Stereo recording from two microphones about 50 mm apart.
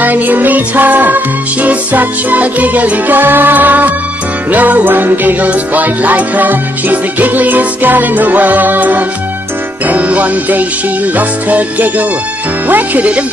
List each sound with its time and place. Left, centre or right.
0.0 s music: right